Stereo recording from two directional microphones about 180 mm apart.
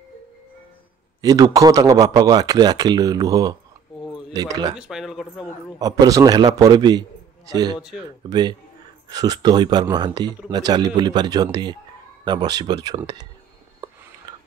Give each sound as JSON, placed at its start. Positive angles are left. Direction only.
{"t": 1.2, "sound": "speech", "side_deg": -20}
{"t": 4.7, "sound": "speech", "side_deg": -5}
{"t": 5.8, "sound": "speech", "side_deg": -20}
{"t": 14.3, "sound": "a sound", "side_deg": -20}